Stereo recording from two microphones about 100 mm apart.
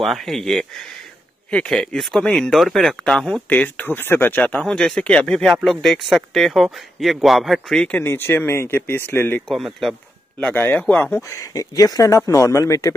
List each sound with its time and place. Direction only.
0.0 s speech: centre (ahead or behind)
3.4 s speech: 15° left (ahead or behind)
8.0 s speech: 25° left (ahead or behind)
9.5 s speech: centre (ahead or behind)
10.4 s speech: 20° left (ahead or behind)
11.1 s speech: 30° left (ahead or behind)